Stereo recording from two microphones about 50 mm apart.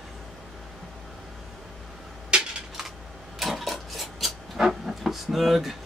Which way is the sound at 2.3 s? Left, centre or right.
Centre.